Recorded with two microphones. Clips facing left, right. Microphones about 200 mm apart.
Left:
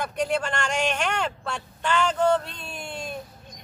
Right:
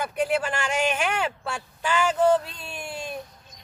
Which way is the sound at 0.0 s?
5° right (ahead or behind).